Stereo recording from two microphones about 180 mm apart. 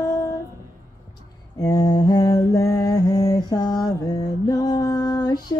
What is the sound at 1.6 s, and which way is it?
Mantra, 20° left (ahead or behind).